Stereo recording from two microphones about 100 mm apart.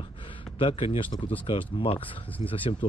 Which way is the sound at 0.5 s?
60° left (ahead or behind).